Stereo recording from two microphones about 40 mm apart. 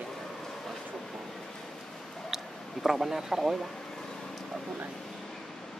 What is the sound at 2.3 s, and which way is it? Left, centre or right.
Speech, centre.